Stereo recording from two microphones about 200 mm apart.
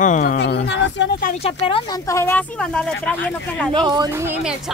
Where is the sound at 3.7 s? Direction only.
20° right (ahead or behind).